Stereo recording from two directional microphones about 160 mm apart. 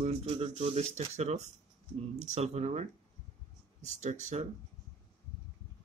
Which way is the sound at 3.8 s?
45° right (ahead or behind).